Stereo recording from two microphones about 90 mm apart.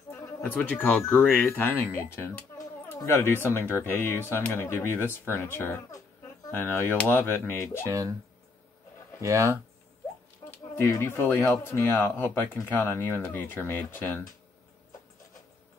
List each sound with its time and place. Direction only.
0.6 s speech: 20° left (ahead or behind)
9.2 s speech: 35° right (ahead or behind)
10.8 s speech: 25° left (ahead or behind)